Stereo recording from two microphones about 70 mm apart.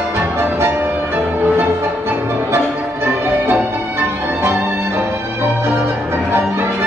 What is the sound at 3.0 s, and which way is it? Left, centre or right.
Music, right.